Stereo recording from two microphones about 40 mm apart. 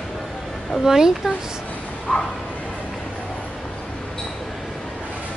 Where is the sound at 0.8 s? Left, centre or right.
Centre.